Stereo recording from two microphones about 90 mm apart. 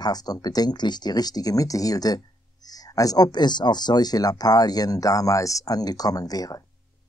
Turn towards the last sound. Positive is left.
turn(degrees=45)  # may be behind; listen again after turning